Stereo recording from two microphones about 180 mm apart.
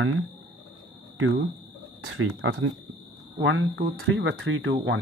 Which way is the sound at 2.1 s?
90° right.